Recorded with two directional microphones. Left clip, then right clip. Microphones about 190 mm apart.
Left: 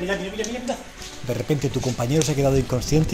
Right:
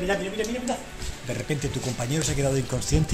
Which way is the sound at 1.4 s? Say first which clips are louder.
Left 6 dB; 20° left (ahead or behind).